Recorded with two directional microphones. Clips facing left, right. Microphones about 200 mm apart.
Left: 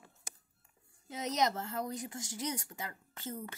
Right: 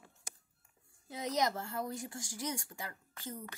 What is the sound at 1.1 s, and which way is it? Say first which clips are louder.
A woman's voice: left 1 dB; 20° left (ahead or behind).